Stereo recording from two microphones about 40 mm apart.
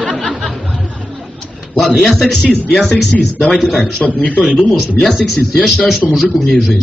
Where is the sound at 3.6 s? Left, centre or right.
Left.